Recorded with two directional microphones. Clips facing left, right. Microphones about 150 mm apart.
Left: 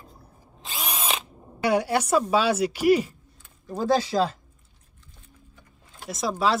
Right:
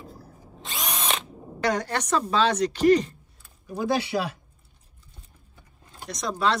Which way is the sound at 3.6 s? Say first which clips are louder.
Left 3 dB; 15° right (ahead or behind).